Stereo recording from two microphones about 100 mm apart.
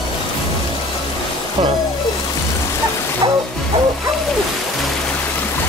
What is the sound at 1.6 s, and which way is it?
Speech, 90° right.